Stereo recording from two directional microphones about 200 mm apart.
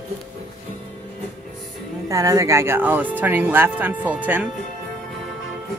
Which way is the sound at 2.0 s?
15° right (ahead or behind).